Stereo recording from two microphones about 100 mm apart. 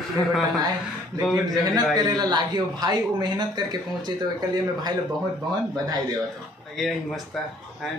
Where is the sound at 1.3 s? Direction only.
35° right (ahead or behind).